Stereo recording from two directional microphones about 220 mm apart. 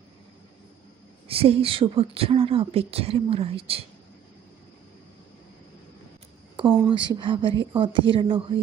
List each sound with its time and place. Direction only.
1.2 s speech: 25° right (ahead or behind)
6.5 s speech: 20° right (ahead or behind)